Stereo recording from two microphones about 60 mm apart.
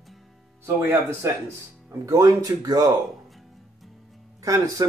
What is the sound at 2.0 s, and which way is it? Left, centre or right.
Speech, right.